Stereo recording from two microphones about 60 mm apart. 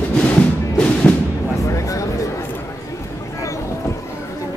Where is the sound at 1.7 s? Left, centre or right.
Left.